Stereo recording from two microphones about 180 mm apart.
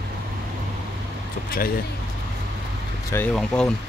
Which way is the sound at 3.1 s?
10° left (ahead or behind).